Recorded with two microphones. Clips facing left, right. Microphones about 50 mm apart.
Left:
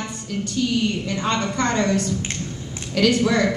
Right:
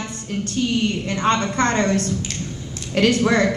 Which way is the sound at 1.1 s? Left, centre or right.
Right.